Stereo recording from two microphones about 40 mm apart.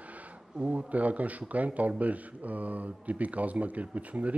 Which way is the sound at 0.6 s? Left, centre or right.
Right.